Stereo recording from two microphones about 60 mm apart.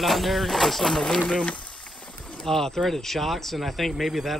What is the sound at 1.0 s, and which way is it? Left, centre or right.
Speech, centre.